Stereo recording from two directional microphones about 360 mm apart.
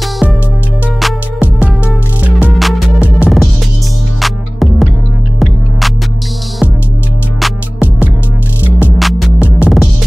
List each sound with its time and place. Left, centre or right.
0.0 s music: centre
7.3 s music: centre